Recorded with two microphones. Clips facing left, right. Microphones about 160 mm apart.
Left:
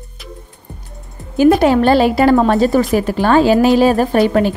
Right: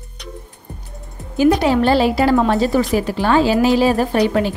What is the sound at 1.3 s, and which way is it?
A woman's voice, 50° left (ahead or behind).